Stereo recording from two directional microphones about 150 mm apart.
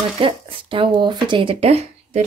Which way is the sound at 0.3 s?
35° right (ahead or behind).